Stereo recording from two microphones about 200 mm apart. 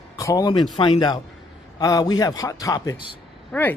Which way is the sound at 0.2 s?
15° left (ahead or behind).